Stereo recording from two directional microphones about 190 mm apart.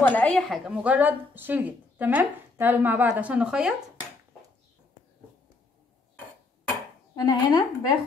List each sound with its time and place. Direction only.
0.0 s a woman's voice: 10° left (ahead or behind)
7.2 s speech: 20° left (ahead or behind)